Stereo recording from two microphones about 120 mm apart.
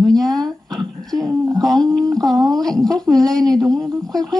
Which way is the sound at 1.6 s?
5° left (ahead or behind).